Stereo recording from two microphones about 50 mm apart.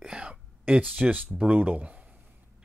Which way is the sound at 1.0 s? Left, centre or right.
Right.